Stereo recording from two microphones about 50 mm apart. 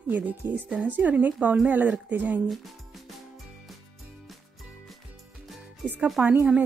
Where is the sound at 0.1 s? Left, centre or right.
Right.